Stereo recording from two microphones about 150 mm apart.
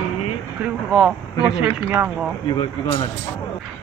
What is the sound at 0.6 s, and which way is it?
A woman's voice, centre (ahead or behind).